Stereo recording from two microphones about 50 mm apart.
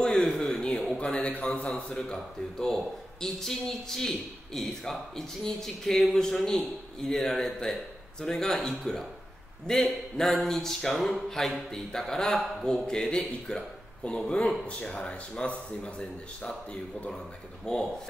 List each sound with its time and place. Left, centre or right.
0.0 s a sound: centre
1.3 s speech: left
1.9 s a man's voice: centre
14.0 s speech: left
17.7 s a man's voice: centre